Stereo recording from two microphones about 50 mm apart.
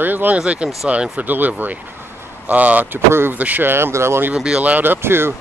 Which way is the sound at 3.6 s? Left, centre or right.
Right.